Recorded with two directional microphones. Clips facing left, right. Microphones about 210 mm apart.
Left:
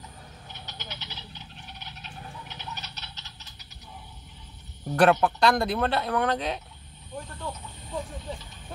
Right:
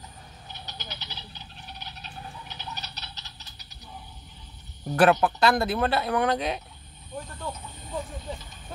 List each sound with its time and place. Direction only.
0.5 s a sound: 35° right (ahead or behind)
4.9 s speech: 5° right (ahead or behind)
7.9 s speech: centre (ahead or behind)